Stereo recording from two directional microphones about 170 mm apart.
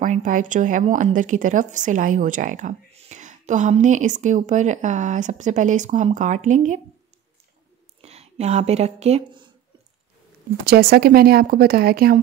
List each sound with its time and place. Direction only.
0.0 s speech: 50° right (ahead or behind)
8.0 s speech: 40° right (ahead or behind)
10.6 s speech: 65° right (ahead or behind)